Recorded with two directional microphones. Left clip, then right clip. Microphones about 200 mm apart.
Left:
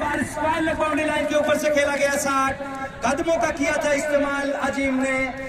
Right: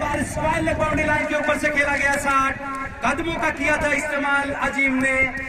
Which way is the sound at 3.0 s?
60° left (ahead or behind).